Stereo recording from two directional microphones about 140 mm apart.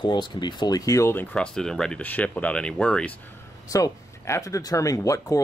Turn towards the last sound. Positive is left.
turn(degrees=25)  # may be behind; listen again after turning